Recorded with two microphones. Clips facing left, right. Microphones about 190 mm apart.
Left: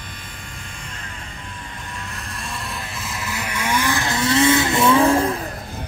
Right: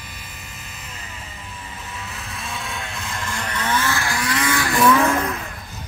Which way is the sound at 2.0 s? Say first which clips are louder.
Even; centre (ahead or behind).